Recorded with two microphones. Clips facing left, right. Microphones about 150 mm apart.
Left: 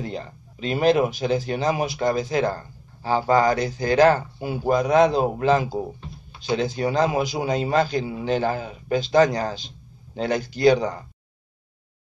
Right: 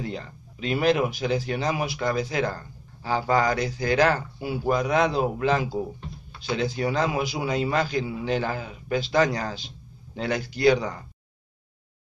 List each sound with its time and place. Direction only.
0.0 s speech: 30° left (ahead or behind)